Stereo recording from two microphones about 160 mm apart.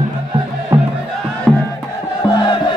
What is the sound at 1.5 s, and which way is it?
Music, centre (ahead or behind).